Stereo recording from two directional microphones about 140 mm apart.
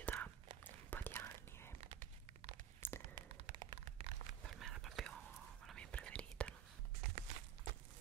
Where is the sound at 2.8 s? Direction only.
15° left (ahead or behind).